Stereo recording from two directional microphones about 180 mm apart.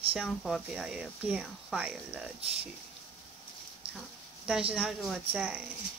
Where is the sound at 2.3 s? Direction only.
35° right (ahead or behind).